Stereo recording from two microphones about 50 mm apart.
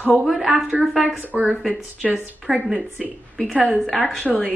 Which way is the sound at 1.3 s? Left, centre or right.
Right.